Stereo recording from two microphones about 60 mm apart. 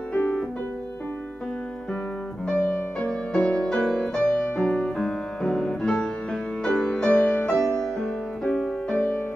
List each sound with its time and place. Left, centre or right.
0.1 s music: left
2.4 s music: left
4.3 s music: left
7.2 s music: left
7.5 s music: centre
8.8 s music: left